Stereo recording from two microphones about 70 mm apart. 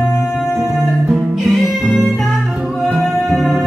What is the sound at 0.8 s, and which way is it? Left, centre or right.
Music, centre.